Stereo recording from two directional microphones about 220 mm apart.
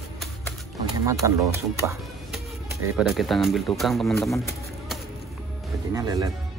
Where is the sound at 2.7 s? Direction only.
15° right (ahead or behind).